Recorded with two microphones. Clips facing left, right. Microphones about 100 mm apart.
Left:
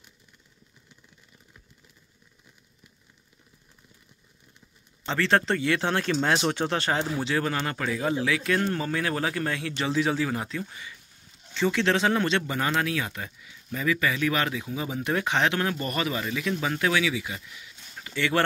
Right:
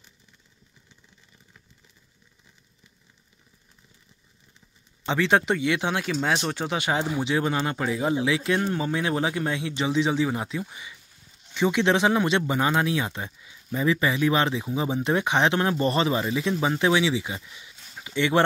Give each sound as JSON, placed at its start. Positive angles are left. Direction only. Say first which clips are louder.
{"t": 5.0, "sound": "speech", "louder": "right 2 dB", "side_deg": -15}